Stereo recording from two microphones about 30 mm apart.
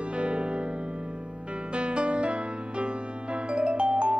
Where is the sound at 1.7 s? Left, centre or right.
Right.